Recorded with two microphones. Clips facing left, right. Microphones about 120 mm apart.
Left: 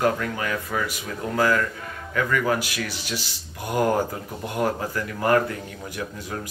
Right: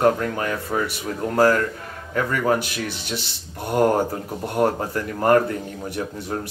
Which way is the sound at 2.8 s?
55° right (ahead or behind).